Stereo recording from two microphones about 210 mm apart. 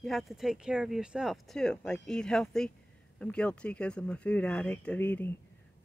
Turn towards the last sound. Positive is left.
turn(degrees=10)  # may be behind; listen again after turning